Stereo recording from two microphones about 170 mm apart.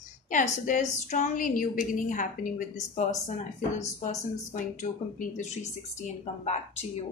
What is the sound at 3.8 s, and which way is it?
Speech, 45° left (ahead or behind).